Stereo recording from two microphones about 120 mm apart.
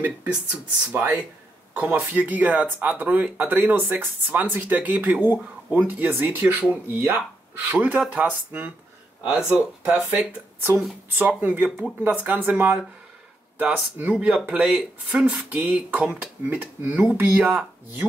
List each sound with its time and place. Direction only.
0.9 s speech: 15° right (ahead or behind)